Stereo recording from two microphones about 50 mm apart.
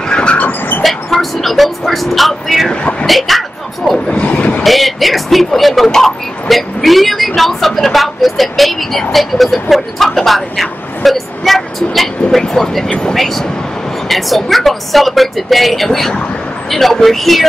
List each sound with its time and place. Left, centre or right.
0.1 s vehicle: centre
0.4 s vehicle: left
0.8 s vehicle: centre
2.7 s speech: left
3.1 s a sound: centre
4.2 s vehicle: left
4.6 s speech: centre